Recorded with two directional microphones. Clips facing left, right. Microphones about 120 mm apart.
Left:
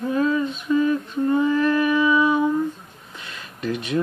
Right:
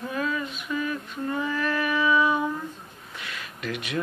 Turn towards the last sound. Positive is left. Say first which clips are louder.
# left 7 dB
turn(degrees=30)  # may be behind; listen again after turning